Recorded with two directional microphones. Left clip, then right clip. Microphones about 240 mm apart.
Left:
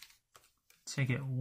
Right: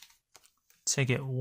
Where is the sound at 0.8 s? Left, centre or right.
Right.